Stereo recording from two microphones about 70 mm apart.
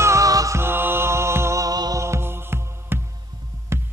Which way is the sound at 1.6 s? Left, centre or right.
Right.